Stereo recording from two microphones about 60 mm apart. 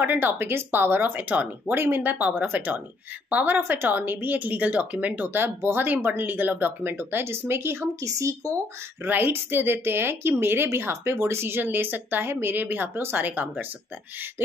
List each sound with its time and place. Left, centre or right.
0.0 s a woman's voice: right
1.8 s a woman's voice: right
8.0 s a woman's voice: right
9.0 s a woman's voice: right